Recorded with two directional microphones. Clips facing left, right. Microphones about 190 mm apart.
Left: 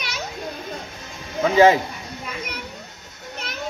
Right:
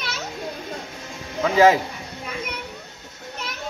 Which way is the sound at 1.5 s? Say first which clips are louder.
Left 1 dB; centre (ahead or behind).